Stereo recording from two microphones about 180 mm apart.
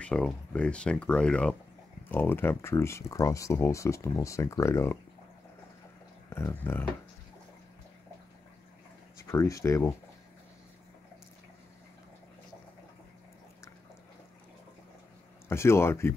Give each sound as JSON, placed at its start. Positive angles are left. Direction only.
{"t": 0.0, "sound": "speech", "side_deg": 5}
{"t": 6.3, "sound": "speech", "side_deg": 10}
{"t": 9.2, "sound": "speech", "side_deg": 15}
{"t": 15.4, "sound": "speech", "side_deg": 15}